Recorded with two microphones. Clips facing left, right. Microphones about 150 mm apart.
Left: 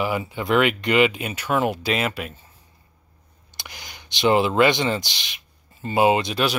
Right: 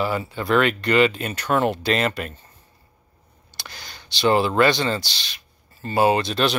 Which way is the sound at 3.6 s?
15° left (ahead or behind).